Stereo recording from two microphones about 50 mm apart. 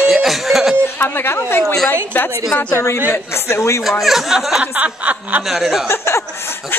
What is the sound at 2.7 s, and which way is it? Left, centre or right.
Speech, left.